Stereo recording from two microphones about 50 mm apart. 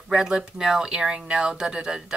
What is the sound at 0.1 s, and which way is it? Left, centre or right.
Speech, centre.